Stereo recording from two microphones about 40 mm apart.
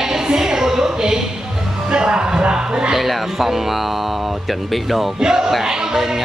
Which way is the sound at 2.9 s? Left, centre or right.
Centre.